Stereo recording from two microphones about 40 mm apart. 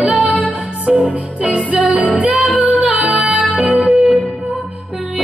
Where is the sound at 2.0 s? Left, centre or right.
Right.